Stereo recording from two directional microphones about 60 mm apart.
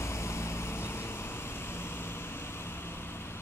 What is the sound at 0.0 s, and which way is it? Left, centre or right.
Vehicle, left.